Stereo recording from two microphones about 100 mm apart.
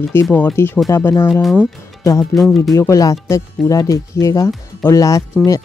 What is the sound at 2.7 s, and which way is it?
Speech, 30° left (ahead or behind).